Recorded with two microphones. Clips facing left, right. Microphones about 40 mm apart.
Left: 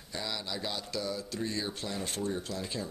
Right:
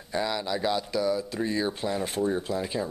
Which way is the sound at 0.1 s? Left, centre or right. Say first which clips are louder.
Right 9 dB; centre.